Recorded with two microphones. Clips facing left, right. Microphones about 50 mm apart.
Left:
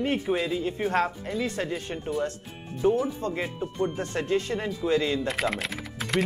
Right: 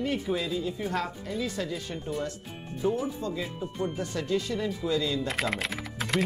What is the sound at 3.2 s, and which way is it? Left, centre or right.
Speech, left.